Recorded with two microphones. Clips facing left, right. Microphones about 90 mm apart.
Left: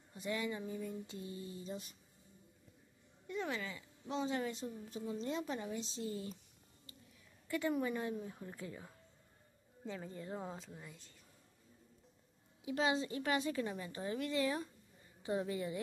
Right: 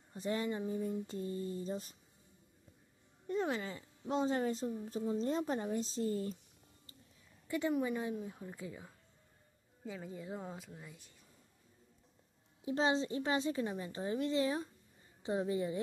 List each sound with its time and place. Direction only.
0.1 s speech: 35° right (ahead or behind)
3.3 s speech: 35° right (ahead or behind)
7.4 s a woman's voice: 20° right (ahead or behind)
12.6 s a woman's voice: 30° right (ahead or behind)